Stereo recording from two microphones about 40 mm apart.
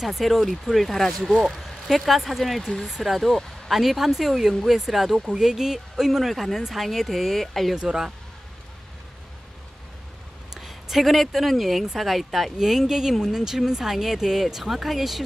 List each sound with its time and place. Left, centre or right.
0.0 s speech: centre
7.7 s speech: centre
10.5 s speech: centre
12.5 s speech: centre